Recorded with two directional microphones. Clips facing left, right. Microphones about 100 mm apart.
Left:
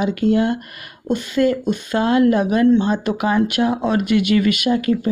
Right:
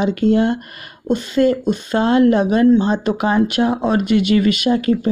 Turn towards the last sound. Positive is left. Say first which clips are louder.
# right 2 dB
turn(degrees=-30)  # may be behind; listen again after turning